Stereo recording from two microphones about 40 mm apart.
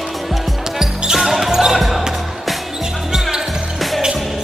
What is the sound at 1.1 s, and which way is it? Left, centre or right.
Basketball bounce, centre.